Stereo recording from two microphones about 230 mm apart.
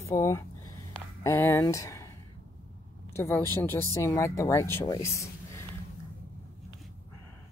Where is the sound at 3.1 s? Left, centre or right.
Centre.